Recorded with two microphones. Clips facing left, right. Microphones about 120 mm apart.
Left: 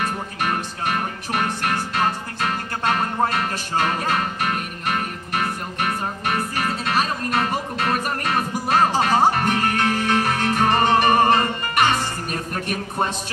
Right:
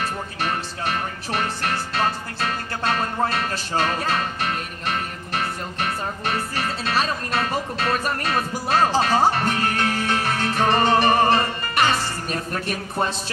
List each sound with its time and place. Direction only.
0.0 s music: 50° left (ahead or behind)
6.8 s music: 35° right (ahead or behind)
8.4 s music: 45° left (ahead or behind)